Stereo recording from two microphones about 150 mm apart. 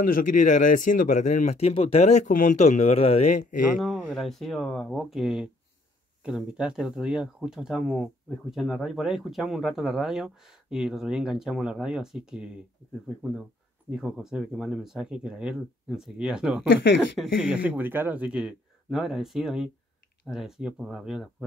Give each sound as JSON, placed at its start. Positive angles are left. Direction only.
{"t": 0.0, "sound": "speech", "side_deg": 65}
{"t": 3.8, "sound": "speech", "side_deg": 0}
{"t": 13.8, "sound": "speech", "side_deg": -5}
{"t": 17.2, "sound": "speech", "side_deg": 10}
{"t": 17.6, "sound": "speech", "side_deg": -10}